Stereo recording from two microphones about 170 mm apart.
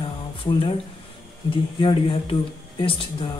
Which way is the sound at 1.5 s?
30° left (ahead or behind).